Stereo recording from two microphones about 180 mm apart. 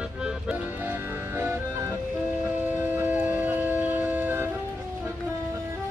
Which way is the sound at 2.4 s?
10° right (ahead or behind).